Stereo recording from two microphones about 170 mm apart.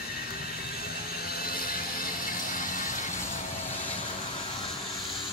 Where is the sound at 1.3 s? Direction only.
60° left (ahead or behind).